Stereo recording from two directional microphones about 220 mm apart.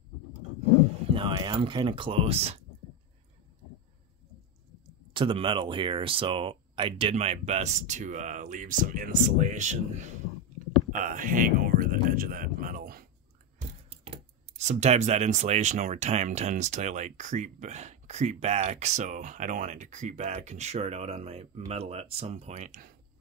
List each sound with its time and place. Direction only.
1.0 s speech: 25° right (ahead or behind)
5.1 s speech: 20° right (ahead or behind); by 13.0 s 40° right (ahead or behind)
13.6 s a sound: 30° right (ahead or behind)
14.6 s speech: 30° right (ahead or behind)